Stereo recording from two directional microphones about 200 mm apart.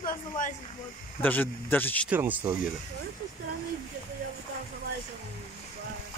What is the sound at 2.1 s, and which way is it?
Speech, 10° right (ahead or behind).